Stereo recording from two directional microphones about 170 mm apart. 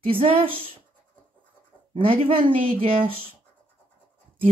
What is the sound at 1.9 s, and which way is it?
Speech, 30° right (ahead or behind).